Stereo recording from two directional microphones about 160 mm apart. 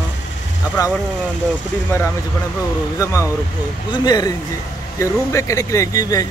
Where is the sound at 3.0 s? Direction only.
20° left (ahead or behind).